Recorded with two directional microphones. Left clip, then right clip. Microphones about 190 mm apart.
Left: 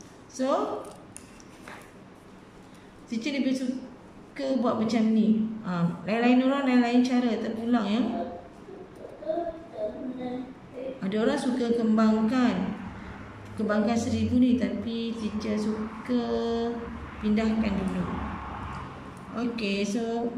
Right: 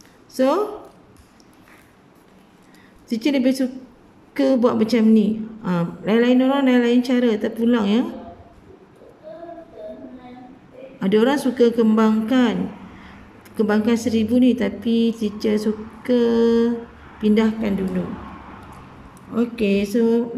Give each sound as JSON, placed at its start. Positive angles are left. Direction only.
{"t": 0.3, "sound": "a sound", "side_deg": -50}
{"t": 3.1, "sound": "a woman's voice", "side_deg": -50}
{"t": 11.0, "sound": "a woman's voice", "side_deg": -45}
{"t": 13.6, "sound": "a woman's voice", "side_deg": -50}
{"t": 19.3, "sound": "a woman's voice", "side_deg": -45}